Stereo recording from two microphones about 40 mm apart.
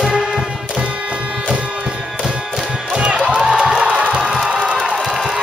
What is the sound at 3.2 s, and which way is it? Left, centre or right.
Crowd, centre.